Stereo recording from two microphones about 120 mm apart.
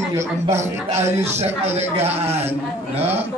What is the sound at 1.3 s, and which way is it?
Speech, 60° right (ahead or behind).